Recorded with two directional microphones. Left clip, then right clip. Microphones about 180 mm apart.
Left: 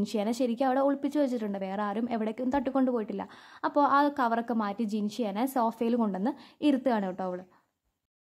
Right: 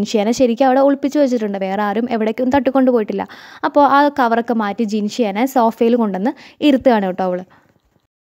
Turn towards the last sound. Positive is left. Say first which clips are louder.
# right 14 dB
turn(degrees=-45)  # may be behind; listen again after turning